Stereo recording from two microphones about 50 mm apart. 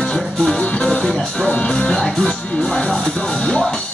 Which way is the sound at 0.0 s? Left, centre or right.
Centre.